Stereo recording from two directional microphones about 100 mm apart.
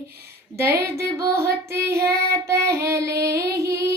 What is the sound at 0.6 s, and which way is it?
Child singing, 30° right (ahead or behind).